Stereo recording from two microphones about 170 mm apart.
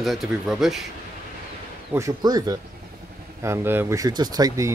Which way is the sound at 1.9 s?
20° right (ahead or behind).